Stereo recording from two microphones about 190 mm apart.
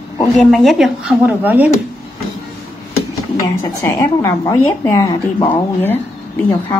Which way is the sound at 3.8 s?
15° left (ahead or behind).